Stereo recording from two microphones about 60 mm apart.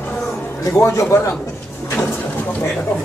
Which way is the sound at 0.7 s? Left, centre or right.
Left.